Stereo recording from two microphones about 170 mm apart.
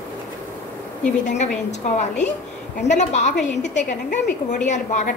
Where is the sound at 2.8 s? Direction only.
45° left (ahead or behind).